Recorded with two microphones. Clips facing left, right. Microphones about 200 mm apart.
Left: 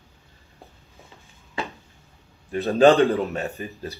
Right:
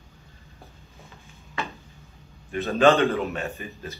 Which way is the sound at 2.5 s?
35° left (ahead or behind).